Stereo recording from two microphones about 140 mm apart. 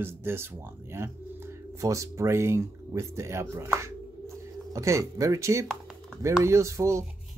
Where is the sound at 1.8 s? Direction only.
20° right (ahead or behind).